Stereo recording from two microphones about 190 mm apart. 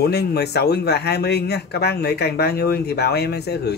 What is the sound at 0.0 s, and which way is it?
A man's voice, 60° left (ahead or behind).